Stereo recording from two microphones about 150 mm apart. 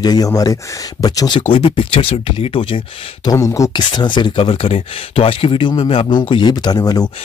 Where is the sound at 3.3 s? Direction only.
20° left (ahead or behind).